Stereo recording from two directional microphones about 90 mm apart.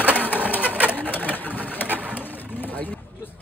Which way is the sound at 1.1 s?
20° left (ahead or behind).